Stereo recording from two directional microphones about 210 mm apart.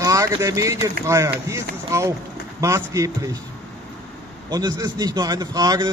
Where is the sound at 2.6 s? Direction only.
15° right (ahead or behind).